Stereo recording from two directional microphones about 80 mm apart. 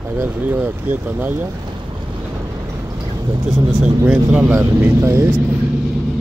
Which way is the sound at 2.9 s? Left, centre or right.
Right.